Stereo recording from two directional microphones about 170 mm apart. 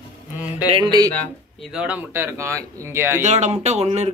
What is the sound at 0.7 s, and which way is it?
Music, 30° right (ahead or behind).